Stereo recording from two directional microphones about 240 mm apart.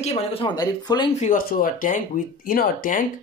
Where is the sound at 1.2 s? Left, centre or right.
Left.